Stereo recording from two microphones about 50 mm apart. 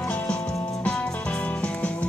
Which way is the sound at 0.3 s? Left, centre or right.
Centre.